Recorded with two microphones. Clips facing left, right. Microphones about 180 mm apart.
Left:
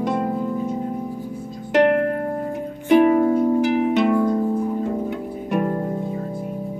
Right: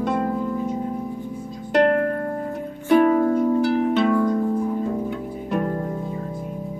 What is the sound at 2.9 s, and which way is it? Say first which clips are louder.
Music: left 2 dB; 15° left (ahead or behind).